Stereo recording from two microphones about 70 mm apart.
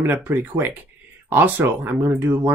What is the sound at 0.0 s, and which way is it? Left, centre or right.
Speech, right.